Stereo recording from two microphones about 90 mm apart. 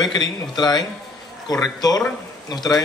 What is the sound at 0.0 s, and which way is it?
A man's voice, 50° left (ahead or behind).